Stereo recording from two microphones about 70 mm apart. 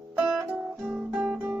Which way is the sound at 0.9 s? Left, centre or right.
Centre.